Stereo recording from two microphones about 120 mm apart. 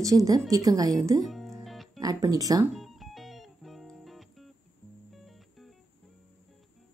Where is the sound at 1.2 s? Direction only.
Centre (ahead or behind).